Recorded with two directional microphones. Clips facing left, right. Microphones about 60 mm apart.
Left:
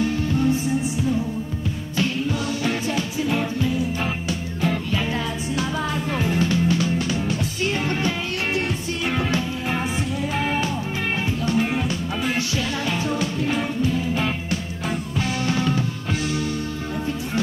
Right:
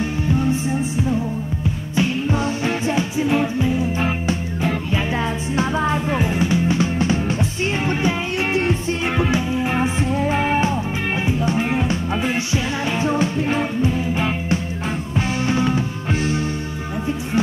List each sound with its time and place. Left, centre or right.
0.0 s music: right
2.0 s music: right